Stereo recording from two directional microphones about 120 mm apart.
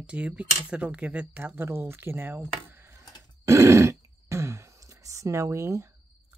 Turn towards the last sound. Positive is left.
turn(degrees=-25)  # may be behind; listen again after turning